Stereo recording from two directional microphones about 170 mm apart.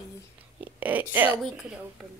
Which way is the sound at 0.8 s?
10° right (ahead or behind).